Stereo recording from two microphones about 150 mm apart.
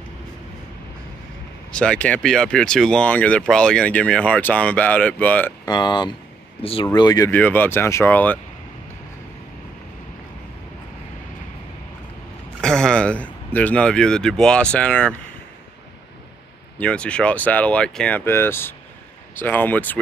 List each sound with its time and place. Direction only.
1.7 s speech: 5° left (ahead or behind)
5.7 s speech: 30° left (ahead or behind)
7.0 s speech: 25° left (ahead or behind)
7.2 s speech: 10° left (ahead or behind)
12.6 s speech: 5° left (ahead or behind)
16.7 s speech: 10° left (ahead or behind)